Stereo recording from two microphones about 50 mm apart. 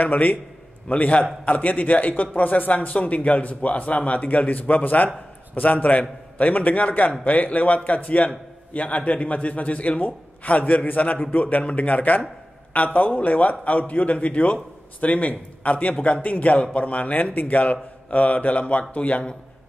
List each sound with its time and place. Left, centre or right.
0.0 s a man's voice: left